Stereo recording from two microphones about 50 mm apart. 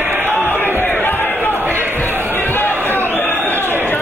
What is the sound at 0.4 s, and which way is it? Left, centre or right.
Crowd, left.